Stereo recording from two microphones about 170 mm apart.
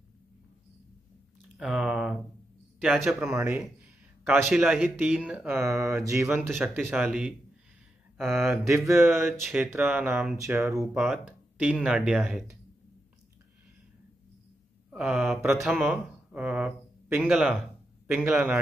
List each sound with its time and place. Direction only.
1.6 s a man's voice: 5° right (ahead or behind)
8.3 s speech: 15° right (ahead or behind)
10.7 s speech: centre (ahead or behind)
14.9 s speech: 5° right (ahead or behind)